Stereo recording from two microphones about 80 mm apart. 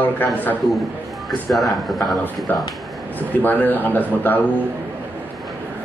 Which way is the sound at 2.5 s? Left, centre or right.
Left.